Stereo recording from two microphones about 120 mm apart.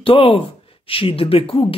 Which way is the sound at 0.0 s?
50° left (ahead or behind).